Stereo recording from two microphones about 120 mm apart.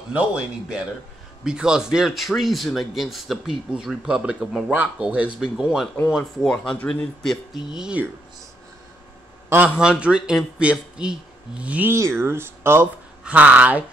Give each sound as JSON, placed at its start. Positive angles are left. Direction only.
{"t": 0.1, "sound": "a man's voice", "side_deg": -10}
{"t": 9.5, "sound": "a man's voice", "side_deg": -10}
{"t": 11.9, "sound": "speech", "side_deg": -20}
{"t": 13.2, "sound": "a man's voice", "side_deg": -10}